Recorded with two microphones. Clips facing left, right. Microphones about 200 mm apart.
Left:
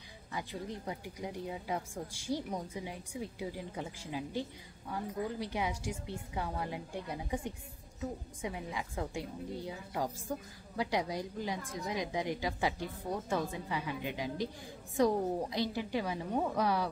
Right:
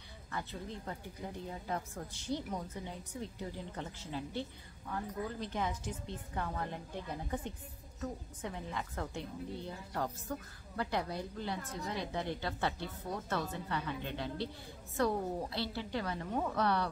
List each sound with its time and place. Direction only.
0.3 s speech: 15° left (ahead or behind)